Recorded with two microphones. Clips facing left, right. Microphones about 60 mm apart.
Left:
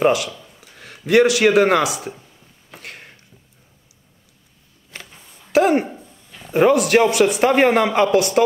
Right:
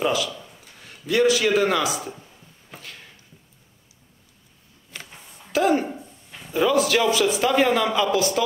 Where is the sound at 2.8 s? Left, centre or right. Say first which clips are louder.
Left 6 dB; left.